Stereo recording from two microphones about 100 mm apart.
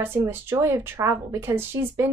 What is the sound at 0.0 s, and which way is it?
A woman's voice, 25° right (ahead or behind).